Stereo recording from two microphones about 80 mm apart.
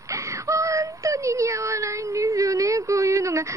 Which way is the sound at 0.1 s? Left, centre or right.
Right.